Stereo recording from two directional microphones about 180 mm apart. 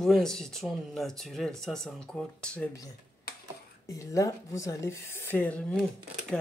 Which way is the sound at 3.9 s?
15° left (ahead or behind).